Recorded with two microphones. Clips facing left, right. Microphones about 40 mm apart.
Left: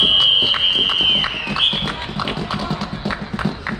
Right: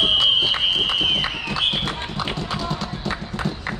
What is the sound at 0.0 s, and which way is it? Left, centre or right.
Run, centre.